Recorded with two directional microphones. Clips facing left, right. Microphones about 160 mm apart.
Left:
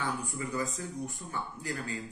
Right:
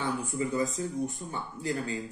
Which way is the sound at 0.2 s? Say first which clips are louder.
Right 5 dB; 25° right (ahead or behind).